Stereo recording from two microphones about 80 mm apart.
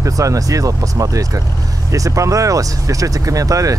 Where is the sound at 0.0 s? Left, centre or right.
Right.